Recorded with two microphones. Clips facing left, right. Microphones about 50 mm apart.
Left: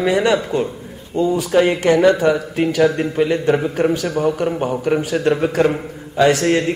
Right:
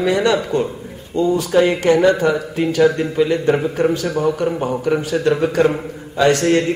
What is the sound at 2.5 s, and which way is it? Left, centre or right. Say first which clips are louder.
Speech: right 1 dB; left.